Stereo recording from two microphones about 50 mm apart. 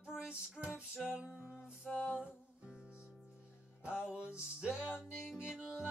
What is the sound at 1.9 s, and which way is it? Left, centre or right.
Music, centre.